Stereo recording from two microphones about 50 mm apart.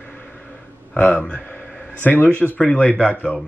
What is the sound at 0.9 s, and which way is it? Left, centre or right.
Speech, left.